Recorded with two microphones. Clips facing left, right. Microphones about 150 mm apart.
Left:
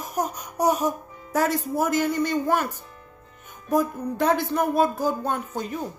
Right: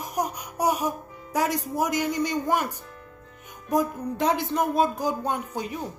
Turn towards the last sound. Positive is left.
turn(degrees=-15)  # may be behind; listen again after turning